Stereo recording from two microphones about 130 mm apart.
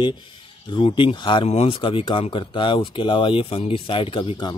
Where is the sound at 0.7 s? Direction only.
40° left (ahead or behind).